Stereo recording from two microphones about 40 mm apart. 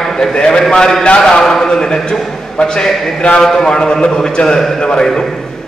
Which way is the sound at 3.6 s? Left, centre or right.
Left.